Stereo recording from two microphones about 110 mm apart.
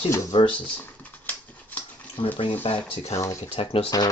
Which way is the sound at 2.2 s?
60° left (ahead or behind).